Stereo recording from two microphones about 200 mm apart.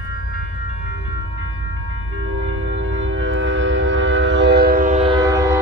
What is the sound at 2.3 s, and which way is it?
Train, 75° right (ahead or behind).